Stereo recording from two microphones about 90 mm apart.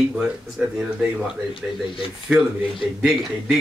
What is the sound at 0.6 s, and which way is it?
Speech, 10° right (ahead or behind).